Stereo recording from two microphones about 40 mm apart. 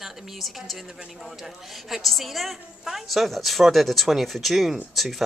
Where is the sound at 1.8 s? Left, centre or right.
Centre.